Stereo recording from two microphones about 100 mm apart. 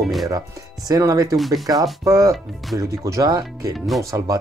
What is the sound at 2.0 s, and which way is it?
Speech, 35° right (ahead or behind).